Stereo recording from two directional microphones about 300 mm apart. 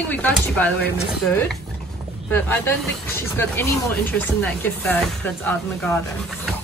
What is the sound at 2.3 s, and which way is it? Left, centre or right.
Speech, centre.